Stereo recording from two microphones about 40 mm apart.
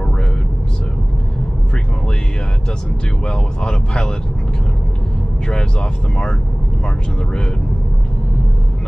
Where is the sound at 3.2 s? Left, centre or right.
Centre.